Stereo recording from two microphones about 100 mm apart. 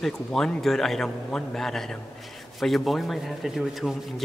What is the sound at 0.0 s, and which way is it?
A man's voice, 5° left (ahead or behind).